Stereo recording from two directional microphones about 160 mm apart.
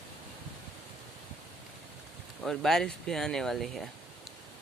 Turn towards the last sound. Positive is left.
turn(degrees=0)  # may be behind; listen again after turning